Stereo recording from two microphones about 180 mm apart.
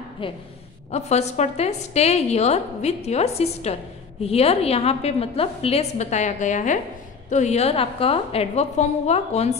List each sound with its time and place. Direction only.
0.2 s a woman's voice: 30° left (ahead or behind)